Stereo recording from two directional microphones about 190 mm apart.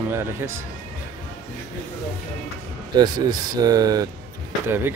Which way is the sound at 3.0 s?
20° right (ahead or behind).